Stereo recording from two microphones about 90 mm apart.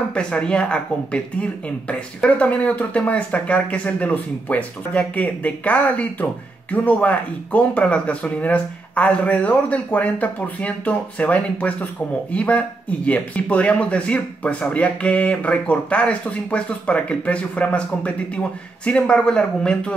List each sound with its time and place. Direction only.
0.1 s speech: 10° left (ahead or behind)